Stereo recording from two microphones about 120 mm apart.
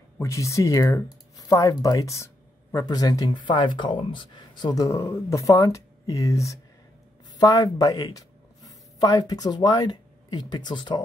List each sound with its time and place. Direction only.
0.2 s speech: 25° left (ahead or behind); by 11.0 s 40° left (ahead or behind)